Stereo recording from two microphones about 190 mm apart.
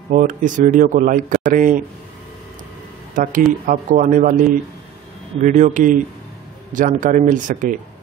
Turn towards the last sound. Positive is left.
turn(degrees=-45)  # may be behind; listen again after turning